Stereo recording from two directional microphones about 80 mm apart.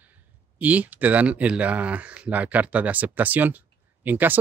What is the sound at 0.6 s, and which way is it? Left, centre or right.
Speech, centre.